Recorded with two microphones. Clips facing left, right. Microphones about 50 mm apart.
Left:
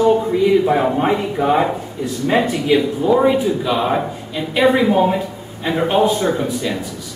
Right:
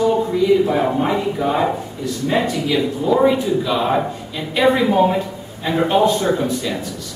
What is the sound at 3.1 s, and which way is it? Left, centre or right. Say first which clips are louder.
A man's voice: left 1 dB; centre.